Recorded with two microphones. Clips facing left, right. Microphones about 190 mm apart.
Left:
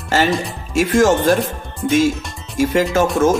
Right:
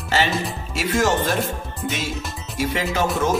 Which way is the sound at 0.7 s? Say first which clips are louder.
Left 7 dB; 50° left (ahead or behind).